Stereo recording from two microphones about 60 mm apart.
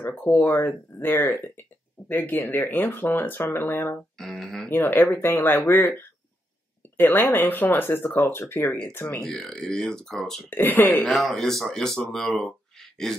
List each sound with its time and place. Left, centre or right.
0.0 s speech: left
4.2 s speech: centre
4.6 s speech: left
9.2 s speech: centre
10.5 s speech: left
11.1 s speech: centre
12.3 s a sound: centre